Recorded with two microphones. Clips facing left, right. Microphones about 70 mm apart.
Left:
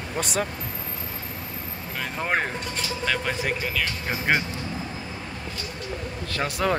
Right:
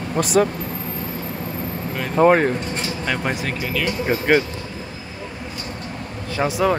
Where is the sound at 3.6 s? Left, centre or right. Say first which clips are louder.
Right 5 dB; centre.